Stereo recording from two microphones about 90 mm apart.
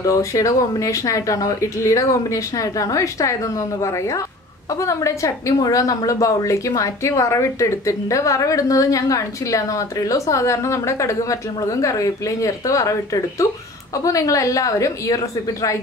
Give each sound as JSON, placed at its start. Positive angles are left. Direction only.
{"t": 0.0, "sound": "a woman's voice", "side_deg": 40}